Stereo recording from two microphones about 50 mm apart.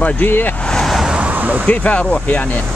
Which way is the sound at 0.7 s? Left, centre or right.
Centre.